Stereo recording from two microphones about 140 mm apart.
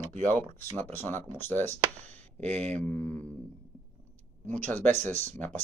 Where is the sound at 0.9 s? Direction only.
15° left (ahead or behind).